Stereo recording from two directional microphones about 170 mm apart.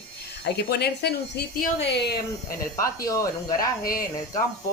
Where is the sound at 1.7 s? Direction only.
85° left.